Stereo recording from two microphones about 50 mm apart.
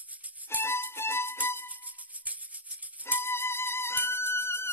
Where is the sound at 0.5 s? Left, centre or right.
Left.